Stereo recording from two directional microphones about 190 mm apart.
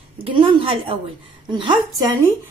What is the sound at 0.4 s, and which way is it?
Speech, 30° right (ahead or behind).